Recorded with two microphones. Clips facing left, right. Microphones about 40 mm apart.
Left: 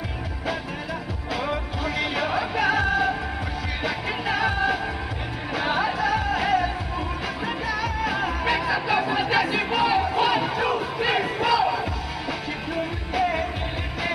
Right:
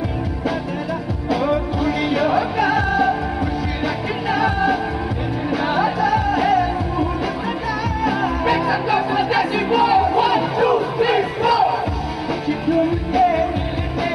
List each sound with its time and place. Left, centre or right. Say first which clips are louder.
1.3 s music: right 8 dB; centre
8.0 s music: right 6 dB; centre
11.0 s crowd: right 6 dB; centre
12.4 s music: right 10 dB; centre